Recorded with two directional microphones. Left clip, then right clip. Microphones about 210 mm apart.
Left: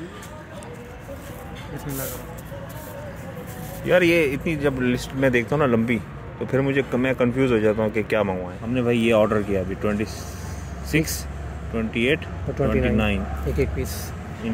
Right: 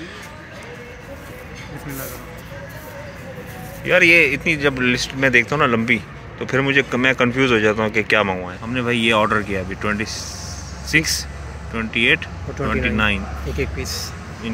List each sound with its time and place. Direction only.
3.8 s speech: 20° left (ahead or behind); by 13.2 s 5° left (ahead or behind)
13.6 s speech: 35° left (ahead or behind)